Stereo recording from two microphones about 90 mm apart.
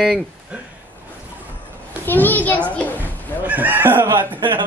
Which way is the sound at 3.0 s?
20° right (ahead or behind).